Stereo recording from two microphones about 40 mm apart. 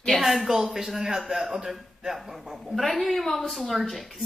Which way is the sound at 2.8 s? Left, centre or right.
Centre.